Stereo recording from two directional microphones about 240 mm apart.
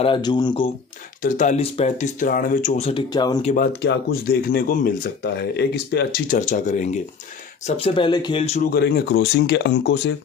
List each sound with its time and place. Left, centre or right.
0.0 s speech: centre
1.2 s speech: left
3.5 s speech: left
8.7 s speech: left